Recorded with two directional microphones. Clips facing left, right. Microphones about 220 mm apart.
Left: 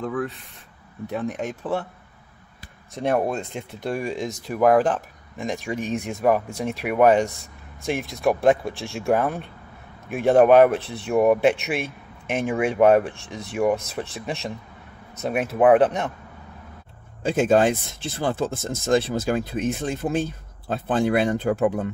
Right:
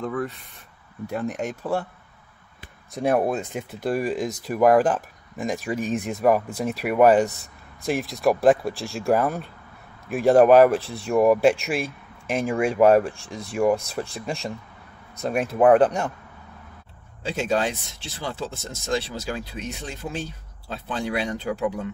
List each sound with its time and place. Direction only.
0.0 s speech: centre (ahead or behind)
2.9 s speech: 5° right (ahead or behind)
17.2 s speech: 50° left (ahead or behind)